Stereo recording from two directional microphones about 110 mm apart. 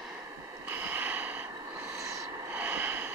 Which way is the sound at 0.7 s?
15° right (ahead or behind).